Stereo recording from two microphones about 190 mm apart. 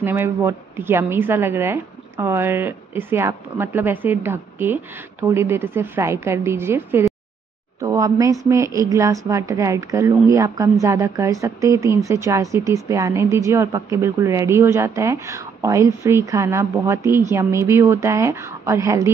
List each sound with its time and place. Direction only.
0.0 s a woman's voice: 10° right (ahead or behind)